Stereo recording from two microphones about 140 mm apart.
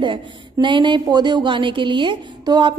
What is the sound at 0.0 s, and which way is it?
A woman's voice, 35° right (ahead or behind).